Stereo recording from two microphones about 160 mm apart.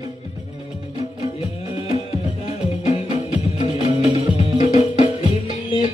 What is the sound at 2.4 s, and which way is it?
Music, 40° left (ahead or behind).